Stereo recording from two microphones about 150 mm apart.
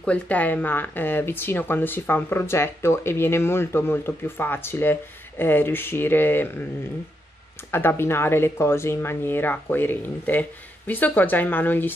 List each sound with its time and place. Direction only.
0.0 s speech: 10° left (ahead or behind)
7.7 s speech: 15° left (ahead or behind)